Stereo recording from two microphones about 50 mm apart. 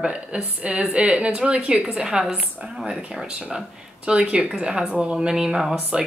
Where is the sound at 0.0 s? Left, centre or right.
Centre.